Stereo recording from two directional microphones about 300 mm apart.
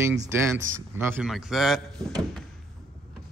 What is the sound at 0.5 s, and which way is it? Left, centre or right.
Speech, right.